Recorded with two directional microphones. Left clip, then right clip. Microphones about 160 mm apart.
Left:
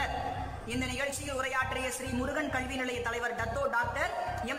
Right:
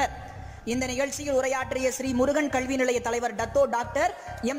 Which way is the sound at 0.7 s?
30° right (ahead or behind).